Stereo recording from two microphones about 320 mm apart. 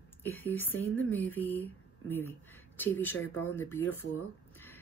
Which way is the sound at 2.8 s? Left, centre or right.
Centre.